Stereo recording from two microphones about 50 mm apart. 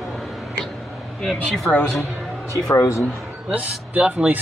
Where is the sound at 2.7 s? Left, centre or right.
Left.